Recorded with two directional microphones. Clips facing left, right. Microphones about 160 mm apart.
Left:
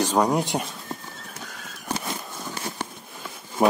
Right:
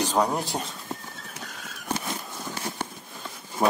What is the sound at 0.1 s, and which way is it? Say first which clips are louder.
Speech: left 3 dB; 10° left (ahead or behind).